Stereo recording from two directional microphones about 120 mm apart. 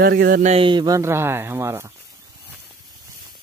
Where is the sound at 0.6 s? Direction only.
40° right (ahead or behind).